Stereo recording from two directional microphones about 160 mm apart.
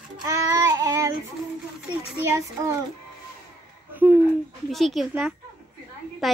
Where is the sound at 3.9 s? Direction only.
10° right (ahead or behind).